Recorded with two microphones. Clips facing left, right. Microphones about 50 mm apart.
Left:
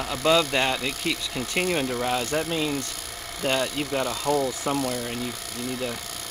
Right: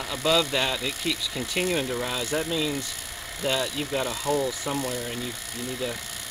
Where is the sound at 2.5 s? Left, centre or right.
Left.